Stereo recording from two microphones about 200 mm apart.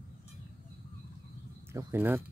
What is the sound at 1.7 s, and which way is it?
Speech, 10° right (ahead or behind).